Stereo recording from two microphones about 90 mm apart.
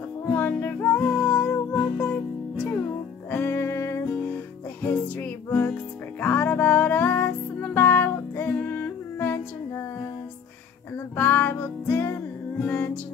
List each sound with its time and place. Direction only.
0.3 s music: 25° left (ahead or behind)
11.1 s music: 25° left (ahead or behind)